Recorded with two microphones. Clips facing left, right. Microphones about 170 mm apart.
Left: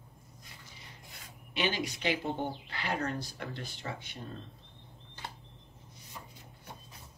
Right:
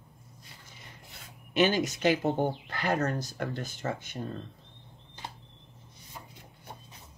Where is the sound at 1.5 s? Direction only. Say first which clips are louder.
Right 8 dB; 45° right (ahead or behind).